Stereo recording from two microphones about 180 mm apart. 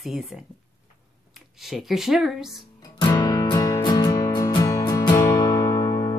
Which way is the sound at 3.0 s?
20° left (ahead or behind).